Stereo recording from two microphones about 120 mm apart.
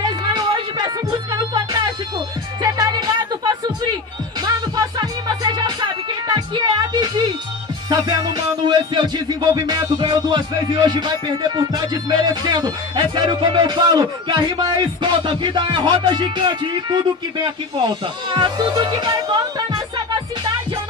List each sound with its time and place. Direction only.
0.0 s music: 35° right (ahead or behind)